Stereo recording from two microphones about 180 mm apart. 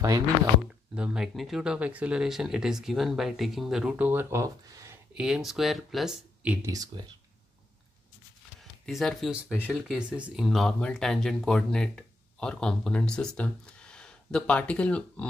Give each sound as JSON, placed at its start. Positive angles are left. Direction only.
{"t": 0.9, "sound": "speech", "side_deg": -5}
{"t": 5.1, "sound": "speech", "side_deg": -5}
{"t": 6.6, "sound": "speech", "side_deg": -20}
{"t": 8.8, "sound": "speech", "side_deg": 0}